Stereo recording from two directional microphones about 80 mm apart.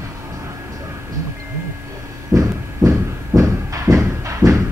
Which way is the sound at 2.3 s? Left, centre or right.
Right.